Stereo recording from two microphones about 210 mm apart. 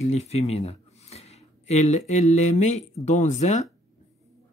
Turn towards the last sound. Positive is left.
turn(degrees=35)  # may be behind; listen again after turning